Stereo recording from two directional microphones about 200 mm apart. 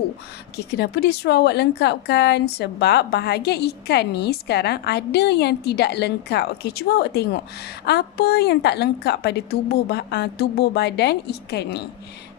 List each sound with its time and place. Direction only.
0.6 s a woman's voice: 55° left (ahead or behind)